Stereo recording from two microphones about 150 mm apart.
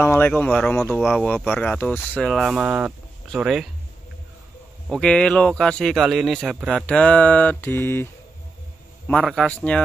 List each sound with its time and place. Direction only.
0.0 s speech: 15° left (ahead or behind)
1.3 s speech: 10° left (ahead or behind)
4.8 s speech: 5° left (ahead or behind)
9.2 s speech: 5° left (ahead or behind)